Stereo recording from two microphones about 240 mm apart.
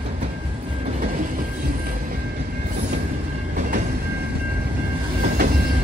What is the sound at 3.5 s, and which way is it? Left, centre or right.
Train, right.